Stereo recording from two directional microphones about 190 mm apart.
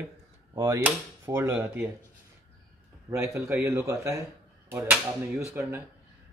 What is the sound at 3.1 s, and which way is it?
Speech, 15° right (ahead or behind).